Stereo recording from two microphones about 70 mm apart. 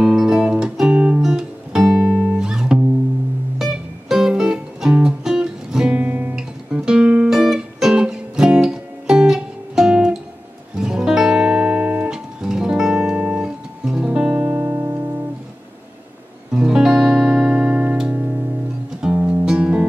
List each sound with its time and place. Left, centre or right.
0.0 s music: centre
5.9 s guitar: right
6.3 s guitar: centre
7.2 s music: centre; by 15.0 s right
16.5 s music: centre